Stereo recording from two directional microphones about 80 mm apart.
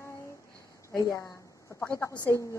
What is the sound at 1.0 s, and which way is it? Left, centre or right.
A woman's voice, left.